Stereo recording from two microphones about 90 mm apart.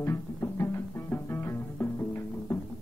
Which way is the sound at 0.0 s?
30° left (ahead or behind).